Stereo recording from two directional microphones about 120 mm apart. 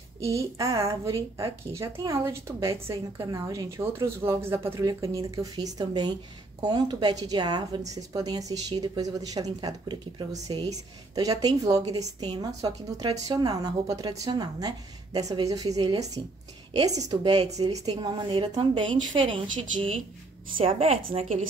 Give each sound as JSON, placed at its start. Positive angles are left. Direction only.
{"t": 0.2, "sound": "a woman's voice", "side_deg": -25}